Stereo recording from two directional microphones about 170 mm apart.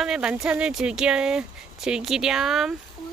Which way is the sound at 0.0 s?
5° right (ahead or behind).